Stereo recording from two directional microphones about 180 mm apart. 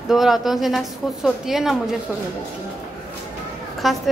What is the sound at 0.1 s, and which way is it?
A woman's voice, centre (ahead or behind).